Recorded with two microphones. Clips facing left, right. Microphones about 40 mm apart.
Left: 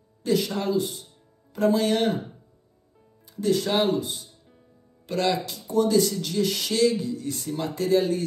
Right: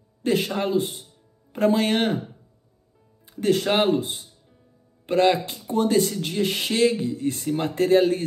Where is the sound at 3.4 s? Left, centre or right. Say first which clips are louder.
Right 2 dB; right.